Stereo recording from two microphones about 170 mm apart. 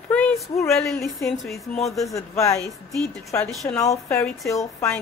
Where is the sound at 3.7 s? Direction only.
20° left (ahead or behind).